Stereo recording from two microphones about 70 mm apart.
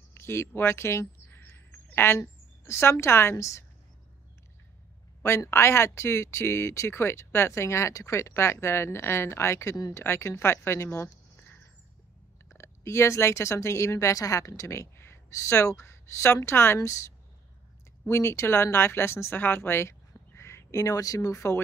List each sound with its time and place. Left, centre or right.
0.1 s a sound: left
0.6 s speech: left
5.5 s speech: left
12.4 s speech: left
18.0 s speech: left
21.4 s speech: left